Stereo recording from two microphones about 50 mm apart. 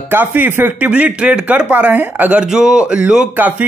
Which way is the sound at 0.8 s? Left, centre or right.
Right.